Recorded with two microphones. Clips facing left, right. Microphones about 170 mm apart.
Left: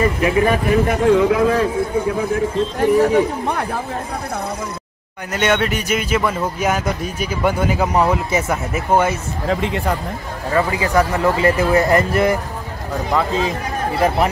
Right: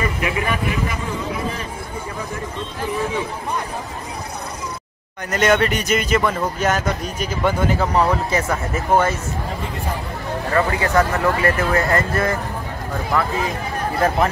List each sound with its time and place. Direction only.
0.0 s speech: 35° left (ahead or behind)
0.8 s a man's voice: 70° left (ahead or behind)
2.8 s speech: 65° left (ahead or behind)
5.3 s speech: 5° left (ahead or behind)
9.5 s speech: 90° left
10.5 s speech: 15° left (ahead or behind)